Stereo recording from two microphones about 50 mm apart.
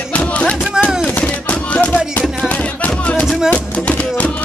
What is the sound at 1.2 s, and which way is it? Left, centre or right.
Music, left.